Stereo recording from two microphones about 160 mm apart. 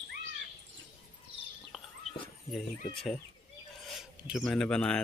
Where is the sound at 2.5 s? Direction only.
Centre (ahead or behind).